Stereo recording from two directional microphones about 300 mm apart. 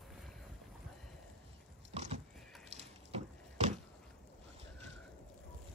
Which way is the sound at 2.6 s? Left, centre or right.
Right.